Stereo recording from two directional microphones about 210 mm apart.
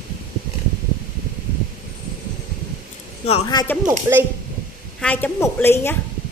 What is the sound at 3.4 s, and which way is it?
Speech, 20° left (ahead or behind).